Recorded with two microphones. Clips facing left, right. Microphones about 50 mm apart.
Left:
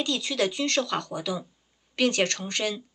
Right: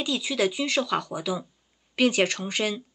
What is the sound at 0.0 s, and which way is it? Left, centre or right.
Speech, centre.